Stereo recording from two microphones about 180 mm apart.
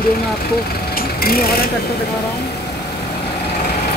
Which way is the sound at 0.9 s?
55° left (ahead or behind).